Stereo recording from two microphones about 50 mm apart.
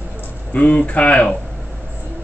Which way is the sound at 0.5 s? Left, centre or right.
Left.